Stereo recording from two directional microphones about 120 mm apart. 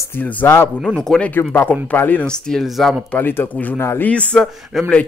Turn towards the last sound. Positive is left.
turn(degrees=0)  # may be behind; listen again after turning